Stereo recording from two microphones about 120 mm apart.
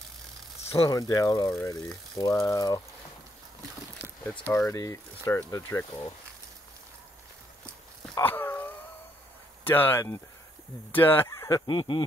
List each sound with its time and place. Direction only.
0.7 s speech: 30° left (ahead or behind)
4.2 s speech: 15° left (ahead or behind)
4.6 s speech: 25° left (ahead or behind)
8.2 s a sound: 20° left (ahead or behind)
9.7 s speech: 20° left (ahead or behind); by 12.0 s 40° left (ahead or behind)